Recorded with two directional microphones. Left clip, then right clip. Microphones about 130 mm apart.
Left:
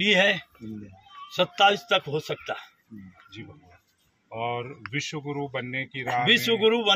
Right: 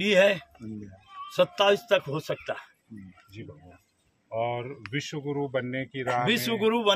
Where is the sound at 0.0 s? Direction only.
35° right (ahead or behind).